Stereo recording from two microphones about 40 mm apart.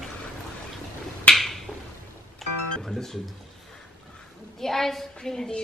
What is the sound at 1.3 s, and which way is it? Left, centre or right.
Finger snapping, centre.